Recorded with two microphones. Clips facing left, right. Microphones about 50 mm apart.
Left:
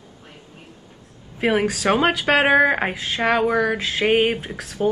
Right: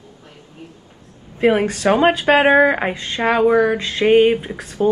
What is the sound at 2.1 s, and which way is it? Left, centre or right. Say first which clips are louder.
Speech: right 5 dB; centre.